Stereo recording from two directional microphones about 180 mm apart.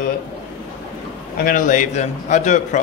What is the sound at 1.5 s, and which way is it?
A man's voice, 45° left (ahead or behind).